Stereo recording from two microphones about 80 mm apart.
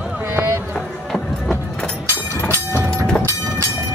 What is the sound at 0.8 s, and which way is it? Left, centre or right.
Music, centre.